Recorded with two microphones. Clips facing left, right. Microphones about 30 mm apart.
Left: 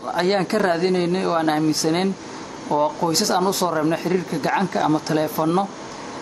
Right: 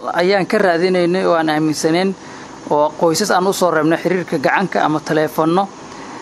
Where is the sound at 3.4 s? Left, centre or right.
Right.